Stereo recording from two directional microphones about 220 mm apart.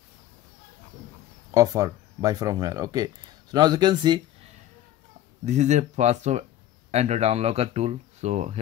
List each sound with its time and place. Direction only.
1.5 s speech: 15° right (ahead or behind)
5.4 s speech: 30° right (ahead or behind)